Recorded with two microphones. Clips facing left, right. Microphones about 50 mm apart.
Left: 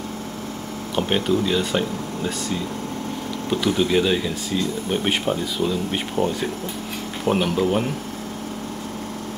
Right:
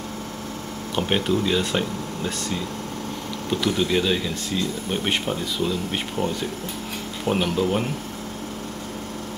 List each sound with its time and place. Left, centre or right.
0.9 s speech: centre